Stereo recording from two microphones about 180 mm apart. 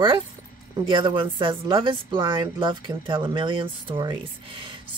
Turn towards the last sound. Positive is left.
turn(degrees=-25)  # may be behind; listen again after turning